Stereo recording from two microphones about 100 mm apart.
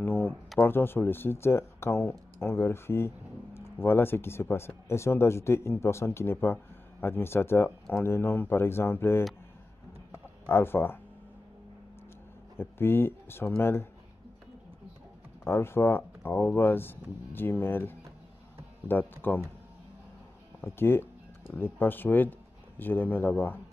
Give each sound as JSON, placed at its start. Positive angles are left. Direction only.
{"t": 0.0, "sound": "a sound", "side_deg": 20}
{"t": 0.6, "sound": "speech", "side_deg": 20}
{"t": 10.4, "sound": "speech", "side_deg": 20}
{"t": 12.5, "sound": "speech", "side_deg": 25}
{"t": 15.4, "sound": "speech", "side_deg": 25}
{"t": 20.6, "sound": "speech", "side_deg": 25}